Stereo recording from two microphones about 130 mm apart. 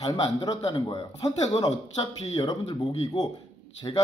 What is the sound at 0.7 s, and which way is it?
A man's voice, 35° left (ahead or behind).